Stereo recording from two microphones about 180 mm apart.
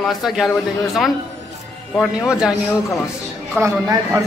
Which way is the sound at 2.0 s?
5° right (ahead or behind).